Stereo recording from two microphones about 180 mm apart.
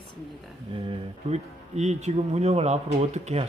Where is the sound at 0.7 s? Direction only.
35° right (ahead or behind).